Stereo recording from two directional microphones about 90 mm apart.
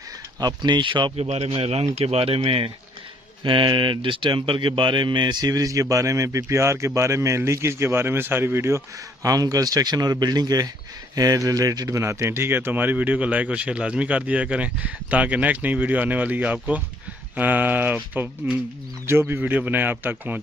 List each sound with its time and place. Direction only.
0.4 s speech: 55° right (ahead or behind); by 2.7 s 90° right
3.4 s speech: 65° right (ahead or behind)
5.5 s a man's voice: 40° right (ahead or behind)
12.0 s speech: 30° right (ahead or behind)